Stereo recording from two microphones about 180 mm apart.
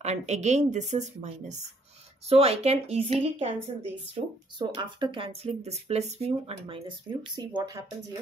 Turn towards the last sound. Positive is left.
turn(degrees=-20)  # may be behind; listen again after turning